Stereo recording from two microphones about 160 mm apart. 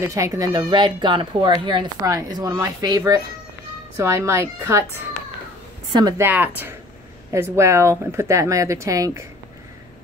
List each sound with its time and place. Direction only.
0.0 s speech: 20° right (ahead or behind)
6.2 s speech: 10° right (ahead or behind)